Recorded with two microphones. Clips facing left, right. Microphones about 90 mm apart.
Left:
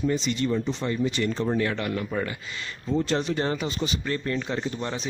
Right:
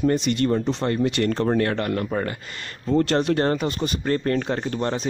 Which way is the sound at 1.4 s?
50° right (ahead or behind).